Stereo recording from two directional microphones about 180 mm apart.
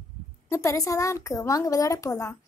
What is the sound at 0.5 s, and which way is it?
Speech, 15° left (ahead or behind).